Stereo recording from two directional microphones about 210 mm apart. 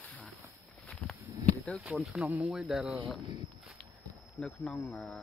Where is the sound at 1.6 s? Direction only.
Centre (ahead or behind).